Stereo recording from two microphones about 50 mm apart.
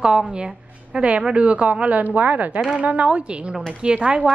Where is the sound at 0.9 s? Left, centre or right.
Right.